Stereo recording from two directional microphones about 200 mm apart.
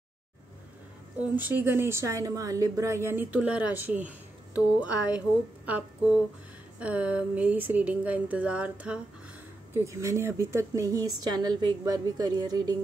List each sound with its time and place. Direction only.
1.3 s a woman's voice: 10° right (ahead or behind)